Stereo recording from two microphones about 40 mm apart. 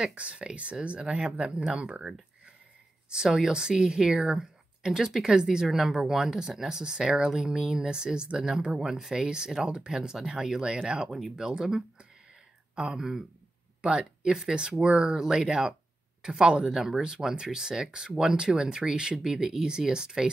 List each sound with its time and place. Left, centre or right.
0.1 s speech: right
3.1 s speech: centre
8.4 s speech: centre
11.0 s speech: centre